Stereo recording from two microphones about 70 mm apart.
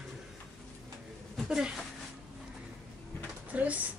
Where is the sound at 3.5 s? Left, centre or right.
Right.